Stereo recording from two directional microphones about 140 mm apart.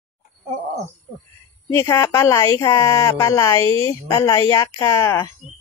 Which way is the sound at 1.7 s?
20° left (ahead or behind).